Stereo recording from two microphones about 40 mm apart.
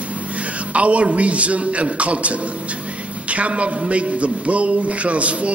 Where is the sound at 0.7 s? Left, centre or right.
Right.